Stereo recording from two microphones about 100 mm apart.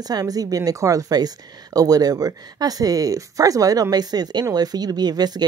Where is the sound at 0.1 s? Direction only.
40° right (ahead or behind).